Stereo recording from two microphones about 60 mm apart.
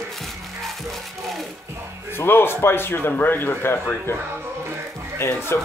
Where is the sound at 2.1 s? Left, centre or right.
Left.